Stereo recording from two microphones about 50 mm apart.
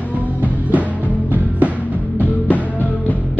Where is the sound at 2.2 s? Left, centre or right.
Left.